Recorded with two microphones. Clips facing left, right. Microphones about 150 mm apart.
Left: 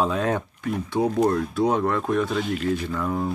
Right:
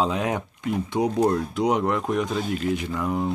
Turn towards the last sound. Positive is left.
turn(degrees=-15)  # may be behind; listen again after turning